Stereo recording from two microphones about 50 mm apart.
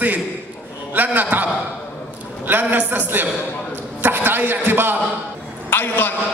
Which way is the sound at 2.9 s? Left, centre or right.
Right.